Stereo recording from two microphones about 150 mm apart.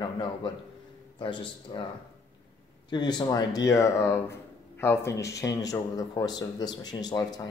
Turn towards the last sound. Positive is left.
turn(degrees=25)  # may be behind; listen again after turning